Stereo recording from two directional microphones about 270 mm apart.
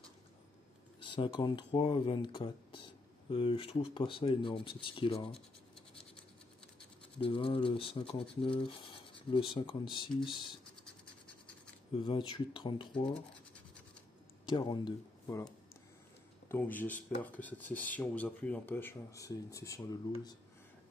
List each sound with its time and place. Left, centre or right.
1.0 s speech: centre
7.2 s speech: centre
11.9 s speech: centre
14.5 s speech: centre